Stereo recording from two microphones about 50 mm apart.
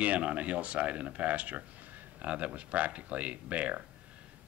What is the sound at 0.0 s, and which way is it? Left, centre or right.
Speech, right.